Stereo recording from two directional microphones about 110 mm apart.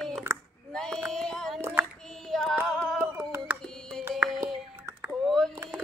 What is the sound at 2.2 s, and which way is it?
Female singing, 5° left (ahead or behind).